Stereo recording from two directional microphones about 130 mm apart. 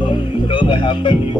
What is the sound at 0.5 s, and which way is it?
Music, 35° left (ahead or behind).